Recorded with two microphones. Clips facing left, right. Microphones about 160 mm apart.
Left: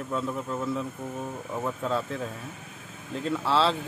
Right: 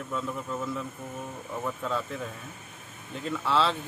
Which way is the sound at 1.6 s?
30° left (ahead or behind).